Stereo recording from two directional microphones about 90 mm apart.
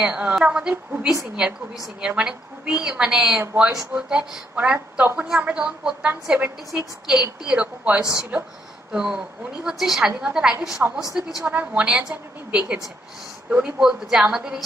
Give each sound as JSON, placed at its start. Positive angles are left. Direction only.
{"t": 0.0, "sound": "a woman's voice", "side_deg": -15}
{"t": 11.4, "sound": "a woman's voice", "side_deg": -15}